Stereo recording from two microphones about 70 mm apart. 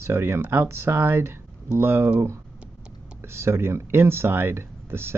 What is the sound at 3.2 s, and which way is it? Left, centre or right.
Speech, right.